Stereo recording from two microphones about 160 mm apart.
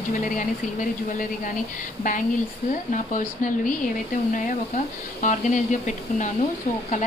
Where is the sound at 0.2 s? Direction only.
50° left (ahead or behind).